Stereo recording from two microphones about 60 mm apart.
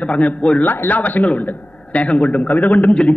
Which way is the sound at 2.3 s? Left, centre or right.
Left.